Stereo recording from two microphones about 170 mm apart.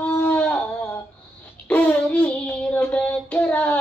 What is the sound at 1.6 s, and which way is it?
Child singing, 10° left (ahead or behind).